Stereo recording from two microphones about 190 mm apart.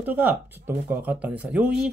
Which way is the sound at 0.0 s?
10° right (ahead or behind).